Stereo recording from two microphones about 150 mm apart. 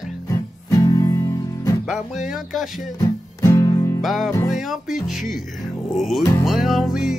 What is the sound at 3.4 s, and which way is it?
Music, 20° left (ahead or behind).